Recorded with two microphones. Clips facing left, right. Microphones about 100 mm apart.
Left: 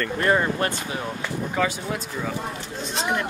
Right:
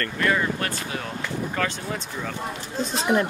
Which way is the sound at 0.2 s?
30° left (ahead or behind).